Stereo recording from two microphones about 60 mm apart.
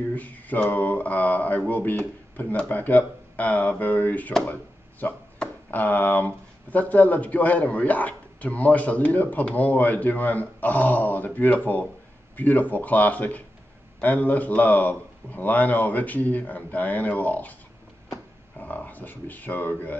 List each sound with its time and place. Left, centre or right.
0.1 s a man's voice: left
18.6 s speech: left